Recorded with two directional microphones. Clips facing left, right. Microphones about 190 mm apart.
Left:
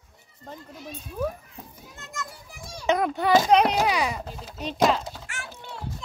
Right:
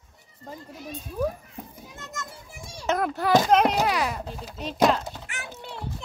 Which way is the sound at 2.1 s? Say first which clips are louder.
Left 3 dB; 20° right (ahead or behind).